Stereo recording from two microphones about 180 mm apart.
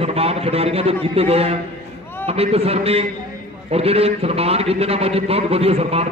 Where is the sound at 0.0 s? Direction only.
35° right (ahead or behind).